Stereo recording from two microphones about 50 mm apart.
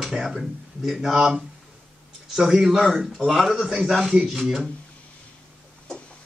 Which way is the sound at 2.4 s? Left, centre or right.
Centre.